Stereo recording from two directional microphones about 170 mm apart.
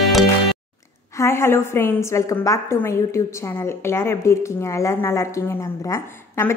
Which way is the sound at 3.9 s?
15° left (ahead or behind).